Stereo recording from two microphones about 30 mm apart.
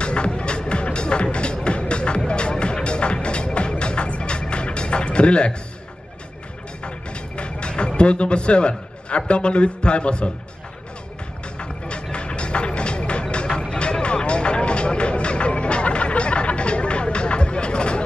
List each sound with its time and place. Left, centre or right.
0.0 s music: left
6.8 s a sound: left
11.6 s music: left
13.3 s vehicle: left
14.0 s music: left